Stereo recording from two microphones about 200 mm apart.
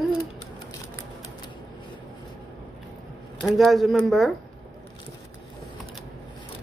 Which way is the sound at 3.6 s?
Centre (ahead or behind).